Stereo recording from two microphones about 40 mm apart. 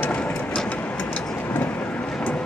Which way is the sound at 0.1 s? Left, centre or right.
Left.